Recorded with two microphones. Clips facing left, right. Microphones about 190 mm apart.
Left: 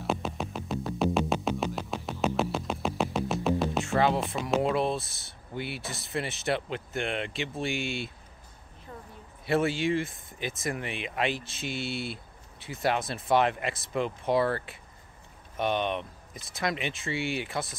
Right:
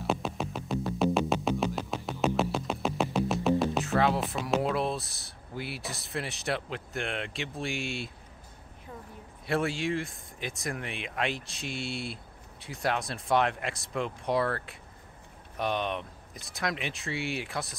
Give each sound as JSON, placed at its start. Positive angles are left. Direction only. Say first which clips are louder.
{"t": 0.0, "sound": "music", "louder": "even", "side_deg": 0}
{"t": 9.5, "sound": "speech", "louder": "left 3 dB", "side_deg": 0}